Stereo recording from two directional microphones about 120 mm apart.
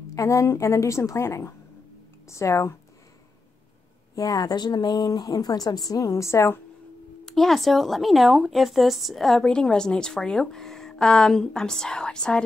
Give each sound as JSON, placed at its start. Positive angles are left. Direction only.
{"t": 0.1, "sound": "a woman's voice", "side_deg": 25}
{"t": 4.1, "sound": "speech", "side_deg": 30}
{"t": 7.2, "sound": "speech", "side_deg": 0}